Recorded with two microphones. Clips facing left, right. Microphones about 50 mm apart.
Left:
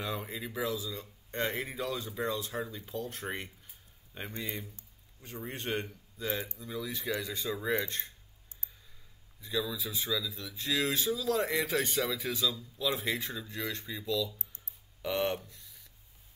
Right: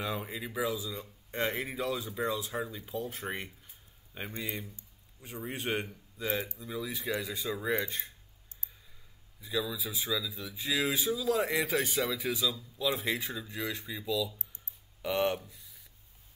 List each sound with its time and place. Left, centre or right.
0.0 s a man's voice: centre
9.4 s speech: centre